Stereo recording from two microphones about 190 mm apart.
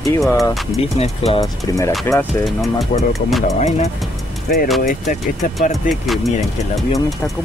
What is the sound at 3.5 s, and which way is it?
Speech, 35° left (ahead or behind).